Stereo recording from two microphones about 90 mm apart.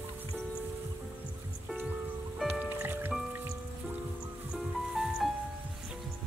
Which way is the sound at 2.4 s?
20° right (ahead or behind).